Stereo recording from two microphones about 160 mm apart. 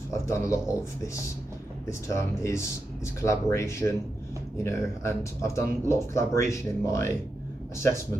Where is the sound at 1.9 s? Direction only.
20° left (ahead or behind).